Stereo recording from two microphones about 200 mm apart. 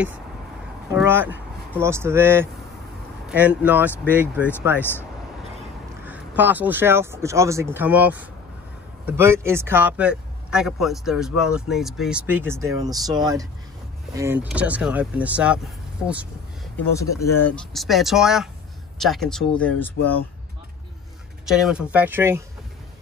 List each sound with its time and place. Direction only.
0.9 s speech: 10° right (ahead or behind)
6.0 s speech: 10° right (ahead or behind)
16.9 s speech: 15° left (ahead or behind)
17.7 s speech: centre (ahead or behind)
20.0 s speech: 70° left (ahead or behind)
21.5 s speech: centre (ahead or behind)